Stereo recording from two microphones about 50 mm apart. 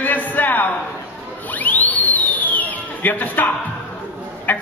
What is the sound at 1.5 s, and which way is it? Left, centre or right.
Sine wave, left.